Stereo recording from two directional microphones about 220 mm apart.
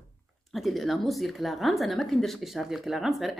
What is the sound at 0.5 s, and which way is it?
Speech, centre (ahead or behind).